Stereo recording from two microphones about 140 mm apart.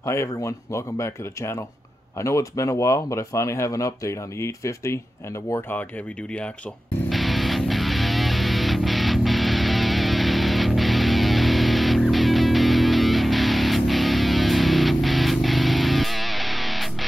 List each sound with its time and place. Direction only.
0.0 s speech: 20° left (ahead or behind)
7.1 s music: centre (ahead or behind)